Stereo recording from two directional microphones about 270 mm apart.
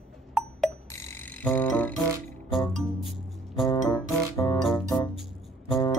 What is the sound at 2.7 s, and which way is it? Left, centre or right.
Music, centre.